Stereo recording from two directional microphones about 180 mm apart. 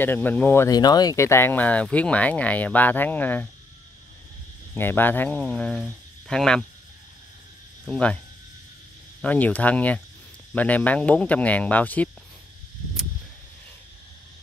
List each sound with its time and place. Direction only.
0.0 s speech: 10° left (ahead or behind)
4.7 s speech: 10° left (ahead or behind)
7.9 s speech: 5° left (ahead or behind)
9.2 s speech: 10° left (ahead or behind)